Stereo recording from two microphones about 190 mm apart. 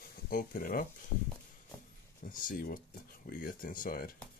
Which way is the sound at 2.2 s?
45° left (ahead or behind).